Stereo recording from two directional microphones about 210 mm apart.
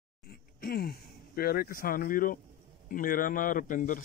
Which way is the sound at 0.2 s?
45° left (ahead or behind).